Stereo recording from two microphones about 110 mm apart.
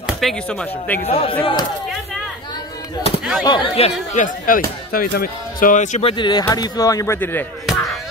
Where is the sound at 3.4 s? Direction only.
45° left (ahead or behind).